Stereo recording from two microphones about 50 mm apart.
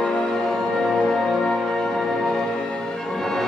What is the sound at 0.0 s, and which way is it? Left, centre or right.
Music, centre.